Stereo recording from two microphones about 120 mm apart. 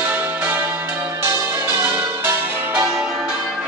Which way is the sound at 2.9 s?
Centre (ahead or behind).